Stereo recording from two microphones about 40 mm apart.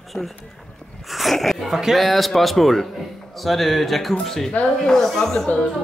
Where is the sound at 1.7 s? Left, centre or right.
Centre.